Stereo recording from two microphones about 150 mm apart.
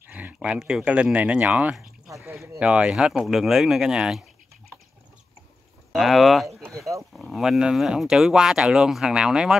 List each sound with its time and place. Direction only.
0.0 s speech: 10° right (ahead or behind)
2.0 s a sound: 20° right (ahead or behind)
2.6 s speech: 5° right (ahead or behind)
5.9 s speech: centre (ahead or behind)